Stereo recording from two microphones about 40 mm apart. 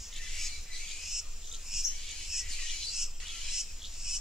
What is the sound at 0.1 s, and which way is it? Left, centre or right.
Squawk, centre.